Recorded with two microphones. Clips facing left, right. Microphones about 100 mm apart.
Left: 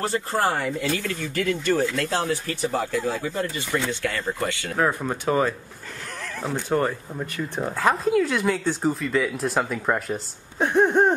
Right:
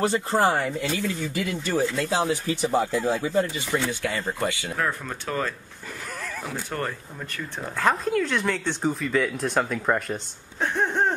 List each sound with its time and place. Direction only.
0.0 s speech: 20° right (ahead or behind)
4.7 s speech: 20° left (ahead or behind)
7.8 s speech: 5° left (ahead or behind)
10.6 s a sound: 15° left (ahead or behind)